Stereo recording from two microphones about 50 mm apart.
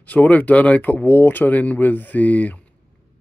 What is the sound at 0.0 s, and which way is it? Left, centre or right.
Speech, left.